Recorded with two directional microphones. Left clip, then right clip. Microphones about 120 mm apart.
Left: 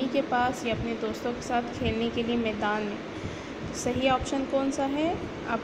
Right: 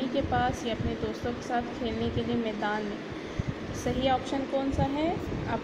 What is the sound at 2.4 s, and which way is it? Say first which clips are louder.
Speech: left 2 dB; 20° left (ahead or behind).